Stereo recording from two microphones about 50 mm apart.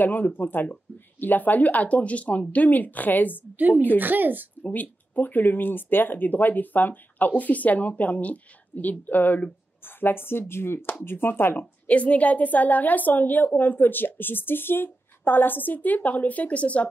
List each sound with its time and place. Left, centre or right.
0.0 s speech: left
3.5 s speech: right
4.6 s speech: left
11.9 s speech: left